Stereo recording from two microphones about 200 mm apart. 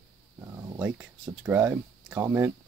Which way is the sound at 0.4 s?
15° right (ahead or behind).